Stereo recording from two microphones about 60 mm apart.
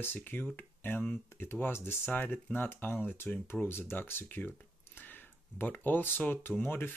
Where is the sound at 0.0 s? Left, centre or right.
Left.